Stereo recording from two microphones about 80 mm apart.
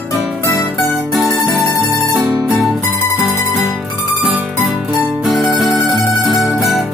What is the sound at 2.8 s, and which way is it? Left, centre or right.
Music, left.